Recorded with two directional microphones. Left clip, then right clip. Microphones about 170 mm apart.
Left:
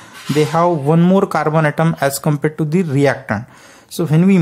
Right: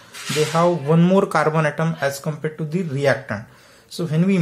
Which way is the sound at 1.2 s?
25° left (ahead or behind).